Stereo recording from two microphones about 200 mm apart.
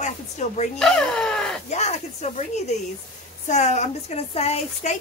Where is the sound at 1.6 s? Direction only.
35° left (ahead or behind).